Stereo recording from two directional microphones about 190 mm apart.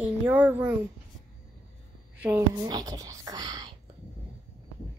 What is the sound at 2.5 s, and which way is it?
Whispering, 20° right (ahead or behind).